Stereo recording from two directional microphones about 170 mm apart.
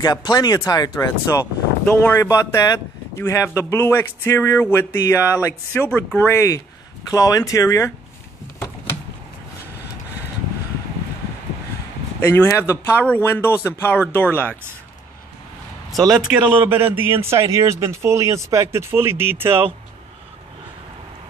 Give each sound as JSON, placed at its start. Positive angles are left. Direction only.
{"t": 0.0, "sound": "speech", "side_deg": 25}
{"t": 1.9, "sound": "speech", "side_deg": 10}
{"t": 12.2, "sound": "speech", "side_deg": 15}
{"t": 15.9, "sound": "speech", "side_deg": 0}
{"t": 16.6, "sound": "a man's voice", "side_deg": -10}